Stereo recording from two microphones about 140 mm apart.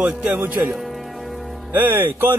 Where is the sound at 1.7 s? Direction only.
10° right (ahead or behind).